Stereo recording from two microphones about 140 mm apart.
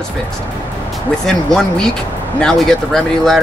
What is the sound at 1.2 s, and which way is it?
Speech, 5° left (ahead or behind).